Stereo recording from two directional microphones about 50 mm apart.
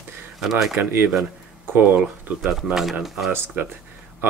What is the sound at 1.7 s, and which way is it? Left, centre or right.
Speech, right.